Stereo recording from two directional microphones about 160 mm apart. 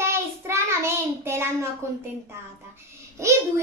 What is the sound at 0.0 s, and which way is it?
Child singing, 15° right (ahead or behind).